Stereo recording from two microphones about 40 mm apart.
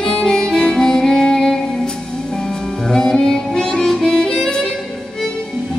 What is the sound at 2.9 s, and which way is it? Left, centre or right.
Music, centre.